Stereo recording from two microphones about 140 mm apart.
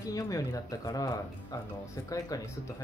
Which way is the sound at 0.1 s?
25° left (ahead or behind).